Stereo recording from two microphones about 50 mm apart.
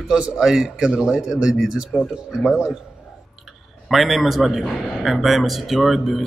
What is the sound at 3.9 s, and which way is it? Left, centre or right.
A man's voice, centre.